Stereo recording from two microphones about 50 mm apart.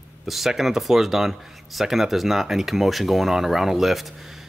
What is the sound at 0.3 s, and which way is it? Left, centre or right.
Speech, centre.